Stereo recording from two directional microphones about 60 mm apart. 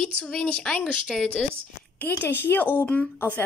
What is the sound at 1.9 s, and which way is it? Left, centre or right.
A woman's voice, left.